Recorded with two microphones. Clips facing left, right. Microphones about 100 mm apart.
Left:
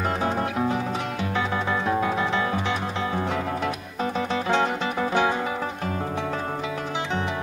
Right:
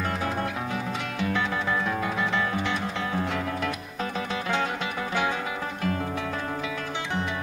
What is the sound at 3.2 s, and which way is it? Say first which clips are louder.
Music: left 1 dB; 20° left (ahead or behind).